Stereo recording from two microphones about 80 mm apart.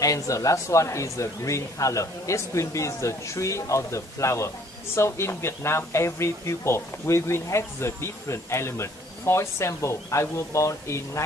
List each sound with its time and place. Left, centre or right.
0.0 s speech: left